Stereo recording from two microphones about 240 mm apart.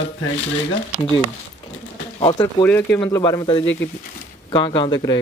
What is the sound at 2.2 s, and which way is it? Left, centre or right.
Speech, centre.